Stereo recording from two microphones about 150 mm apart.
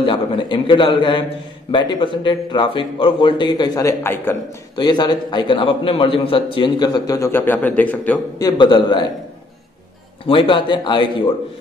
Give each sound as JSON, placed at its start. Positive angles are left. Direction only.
{"t": 0.0, "sound": "a man's voice", "side_deg": 35}
{"t": 4.7, "sound": "a man's voice", "side_deg": 30}
{"t": 8.4, "sound": "a man's voice", "side_deg": 30}
{"t": 10.2, "sound": "a man's voice", "side_deg": 35}